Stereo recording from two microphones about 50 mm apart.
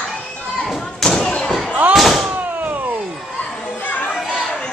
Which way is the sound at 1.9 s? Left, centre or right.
Centre.